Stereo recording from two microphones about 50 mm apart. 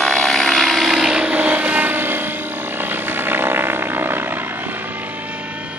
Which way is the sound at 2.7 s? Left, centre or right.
Right.